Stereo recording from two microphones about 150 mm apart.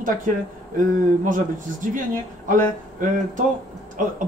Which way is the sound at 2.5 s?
60° right (ahead or behind).